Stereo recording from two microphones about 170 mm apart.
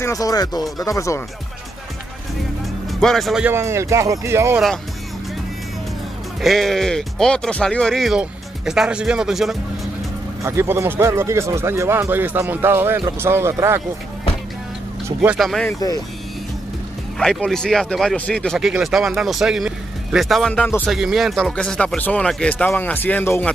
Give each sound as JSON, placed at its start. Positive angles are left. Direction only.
{"t": 0.0, "sound": "speech", "side_deg": 20}
{"t": 2.9, "sound": "speech", "side_deg": 0}
{"t": 3.5, "sound": "speech", "side_deg": -15}
{"t": 6.4, "sound": "speech", "side_deg": 0}
{"t": 10.4, "sound": "speech", "side_deg": -15}
{"t": 15.1, "sound": "speech", "side_deg": 0}
{"t": 17.2, "sound": "speech", "side_deg": 5}
{"t": 20.8, "sound": "speech", "side_deg": 0}